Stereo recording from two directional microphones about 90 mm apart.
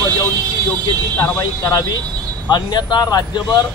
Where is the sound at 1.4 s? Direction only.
45° left (ahead or behind).